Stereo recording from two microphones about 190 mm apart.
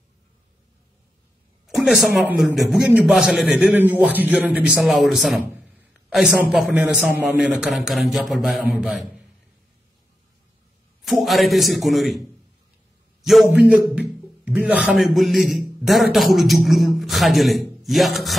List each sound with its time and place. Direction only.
1.7 s a man's voice: centre (ahead or behind)
11.1 s a man's voice: centre (ahead or behind)
13.2 s a man's voice: centre (ahead or behind)